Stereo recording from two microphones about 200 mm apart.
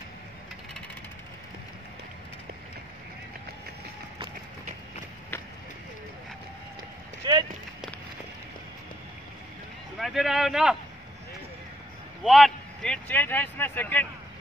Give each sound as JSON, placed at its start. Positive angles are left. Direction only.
{"t": 7.2, "sound": "a sound", "side_deg": -20}
{"t": 9.9, "sound": "speech", "side_deg": 0}
{"t": 12.2, "sound": "speech", "side_deg": 0}